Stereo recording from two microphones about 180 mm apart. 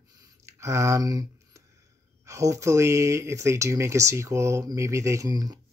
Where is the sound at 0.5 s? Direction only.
15° right (ahead or behind).